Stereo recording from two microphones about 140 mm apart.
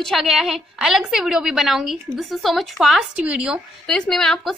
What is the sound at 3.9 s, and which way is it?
Speech, 5° left (ahead or behind).